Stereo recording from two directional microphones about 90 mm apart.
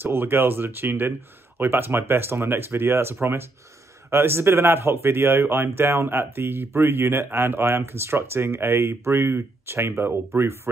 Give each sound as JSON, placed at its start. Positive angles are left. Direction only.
{"t": 0.0, "sound": "speech", "side_deg": -25}